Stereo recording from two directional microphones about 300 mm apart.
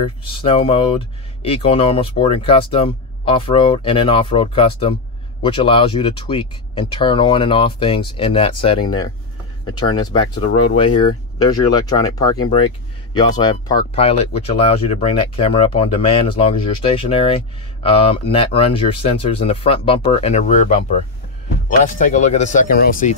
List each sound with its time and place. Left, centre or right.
0.4 s speech: centre